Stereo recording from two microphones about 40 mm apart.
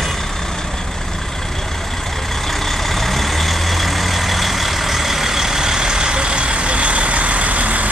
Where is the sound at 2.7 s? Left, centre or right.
Centre.